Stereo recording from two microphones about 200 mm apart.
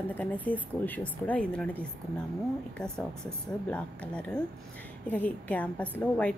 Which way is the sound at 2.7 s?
5° left (ahead or behind).